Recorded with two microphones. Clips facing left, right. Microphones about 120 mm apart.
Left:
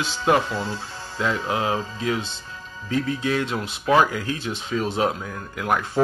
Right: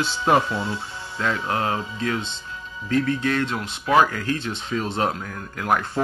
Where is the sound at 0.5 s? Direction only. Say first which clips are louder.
Right 1 dB; 35° left (ahead or behind).